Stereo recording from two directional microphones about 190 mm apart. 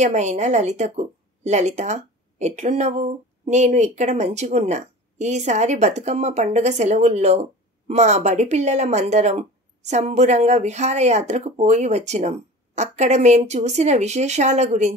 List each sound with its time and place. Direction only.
0.0 s a woman's voice: 35° right (ahead or behind)